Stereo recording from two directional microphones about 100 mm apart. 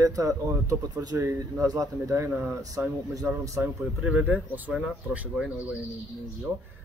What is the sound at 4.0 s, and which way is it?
Speech, 10° right (ahead or behind).